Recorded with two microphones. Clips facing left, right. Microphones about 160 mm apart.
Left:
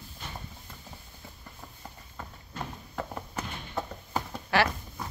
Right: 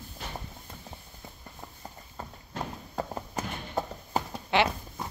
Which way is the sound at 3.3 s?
35° right (ahead or behind).